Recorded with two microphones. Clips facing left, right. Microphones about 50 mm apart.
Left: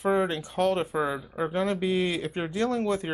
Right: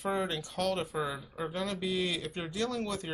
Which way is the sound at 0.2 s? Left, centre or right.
Centre.